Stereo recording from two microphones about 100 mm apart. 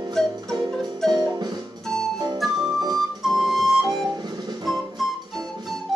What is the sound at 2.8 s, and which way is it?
Flute, 40° right (ahead or behind).